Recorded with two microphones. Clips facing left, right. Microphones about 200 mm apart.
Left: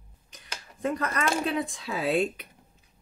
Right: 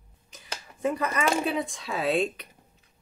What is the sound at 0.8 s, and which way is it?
Speech, 5° right (ahead or behind).